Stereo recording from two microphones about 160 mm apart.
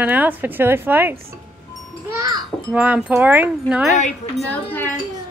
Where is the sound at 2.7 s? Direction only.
10° right (ahead or behind).